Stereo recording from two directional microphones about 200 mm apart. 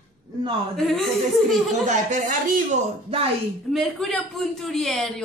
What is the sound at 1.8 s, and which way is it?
A man's voice, 40° right (ahead or behind).